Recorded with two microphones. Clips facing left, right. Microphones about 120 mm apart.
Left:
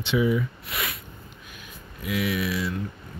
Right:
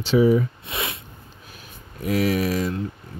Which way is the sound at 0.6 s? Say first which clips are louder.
Right 3 dB; 25° right (ahead or behind).